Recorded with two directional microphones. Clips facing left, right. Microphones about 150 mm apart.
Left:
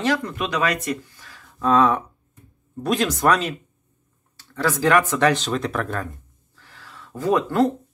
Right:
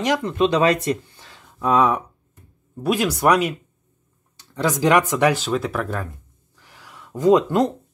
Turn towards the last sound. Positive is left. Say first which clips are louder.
# right 3 dB
turn(degrees=-15)  # may be behind; listen again after turning